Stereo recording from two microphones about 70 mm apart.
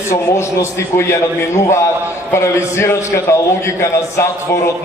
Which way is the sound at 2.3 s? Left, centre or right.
Left.